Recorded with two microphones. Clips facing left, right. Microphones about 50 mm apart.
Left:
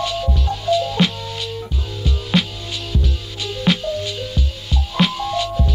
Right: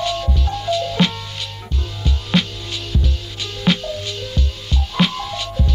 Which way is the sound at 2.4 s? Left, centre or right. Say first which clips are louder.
Even; centre.